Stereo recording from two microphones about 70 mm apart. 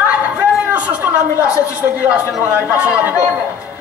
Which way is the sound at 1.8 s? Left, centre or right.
Right.